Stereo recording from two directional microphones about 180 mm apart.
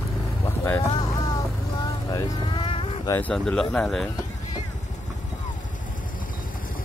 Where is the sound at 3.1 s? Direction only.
10° left (ahead or behind).